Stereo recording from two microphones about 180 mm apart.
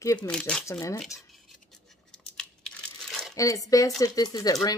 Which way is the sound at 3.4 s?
20° left (ahead or behind).